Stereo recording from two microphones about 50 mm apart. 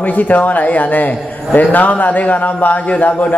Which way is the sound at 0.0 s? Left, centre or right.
Left.